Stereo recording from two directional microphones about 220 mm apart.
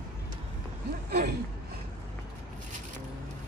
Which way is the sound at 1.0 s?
45° right (ahead or behind).